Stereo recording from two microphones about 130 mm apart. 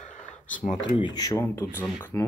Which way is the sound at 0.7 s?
45° left (ahead or behind).